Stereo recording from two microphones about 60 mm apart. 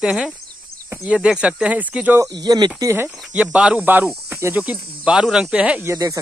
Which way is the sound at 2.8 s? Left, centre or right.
Right.